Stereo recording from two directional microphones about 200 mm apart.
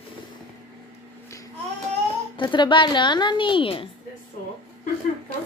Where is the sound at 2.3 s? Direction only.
25° left (ahead or behind).